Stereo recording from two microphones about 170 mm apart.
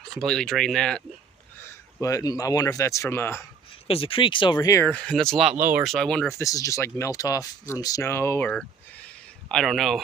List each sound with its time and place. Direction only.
0.2 s speech: 5° left (ahead or behind)
1.6 s speech: 20° left (ahead or behind)
3.8 s speech: 35° left (ahead or behind)
4.8 s speech: 5° left (ahead or behind)
5.6 s speech: 10° right (ahead or behind)
5.9 s speech: 5° left (ahead or behind)
6.3 s speech: 20° left (ahead or behind); by 10.0 s centre (ahead or behind)